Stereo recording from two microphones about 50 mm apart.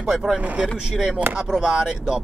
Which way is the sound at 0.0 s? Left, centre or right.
Centre.